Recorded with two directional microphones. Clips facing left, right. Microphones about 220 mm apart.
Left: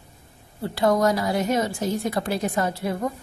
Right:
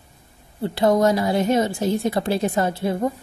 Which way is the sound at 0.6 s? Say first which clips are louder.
Right 3 dB; 25° right (ahead or behind).